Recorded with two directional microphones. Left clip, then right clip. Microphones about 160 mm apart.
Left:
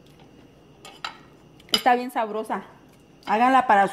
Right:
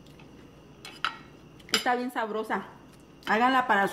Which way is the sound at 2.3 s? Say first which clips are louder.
Left 2 dB; 25° left (ahead or behind).